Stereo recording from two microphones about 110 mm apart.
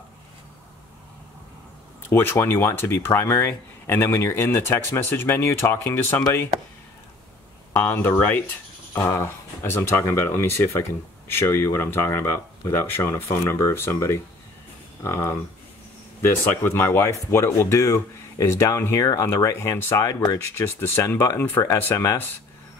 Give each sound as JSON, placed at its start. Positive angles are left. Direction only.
{"t": 2.0, "sound": "speech", "side_deg": 20}
{"t": 7.7, "sound": "speech", "side_deg": 20}
{"t": 20.5, "sound": "speech", "side_deg": 25}